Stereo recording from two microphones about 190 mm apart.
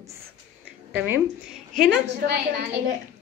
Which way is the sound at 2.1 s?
65° right (ahead or behind).